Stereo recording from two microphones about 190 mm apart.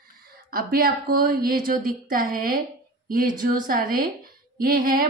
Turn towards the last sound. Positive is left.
turn(degrees=-45)  # may be behind; listen again after turning